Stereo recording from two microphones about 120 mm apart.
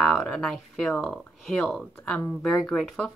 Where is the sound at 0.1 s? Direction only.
5° left (ahead or behind).